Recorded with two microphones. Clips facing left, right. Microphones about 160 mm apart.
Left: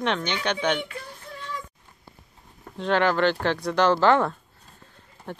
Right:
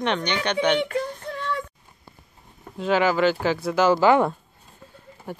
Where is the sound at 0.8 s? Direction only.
65° right (ahead or behind).